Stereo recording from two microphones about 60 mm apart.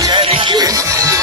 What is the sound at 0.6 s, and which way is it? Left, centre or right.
Music, right.